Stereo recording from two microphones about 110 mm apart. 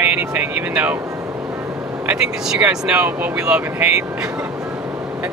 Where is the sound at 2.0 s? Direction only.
10° right (ahead or behind).